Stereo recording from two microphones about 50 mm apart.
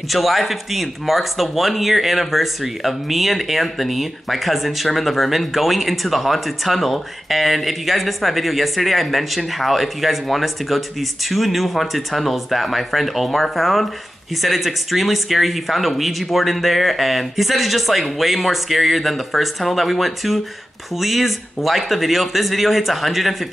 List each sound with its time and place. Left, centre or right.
0.1 s speech: centre